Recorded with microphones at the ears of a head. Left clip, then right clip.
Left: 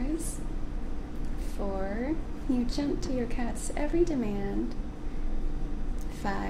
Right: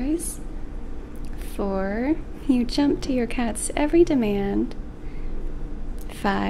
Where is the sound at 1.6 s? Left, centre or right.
Right.